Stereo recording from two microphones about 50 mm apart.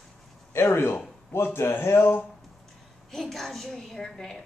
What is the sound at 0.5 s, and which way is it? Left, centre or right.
Speech, left.